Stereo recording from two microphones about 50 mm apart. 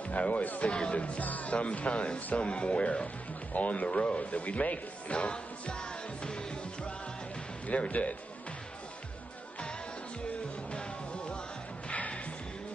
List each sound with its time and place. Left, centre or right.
0.1 s speech: left
10.7 s music: centre